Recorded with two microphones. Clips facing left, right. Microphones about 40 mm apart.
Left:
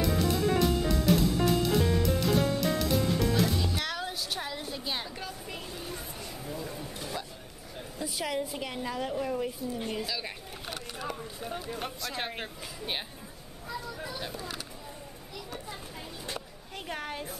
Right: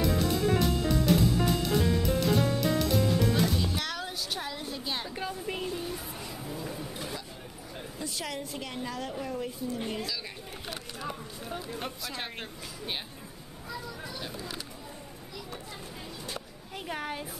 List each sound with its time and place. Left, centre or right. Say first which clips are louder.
0.0 s music: even; centre
5.1 s a sound: right 5 dB; centre
5.7 s music: right 5 dB; centre
6.4 s a sound: even; centre
8.0 s a woman's voice: left 4 dB; centre
10.0 s a woman's voice: left 1 dB; centre
11.4 s speech: even; centre
16.7 s speech: right 1 dB; centre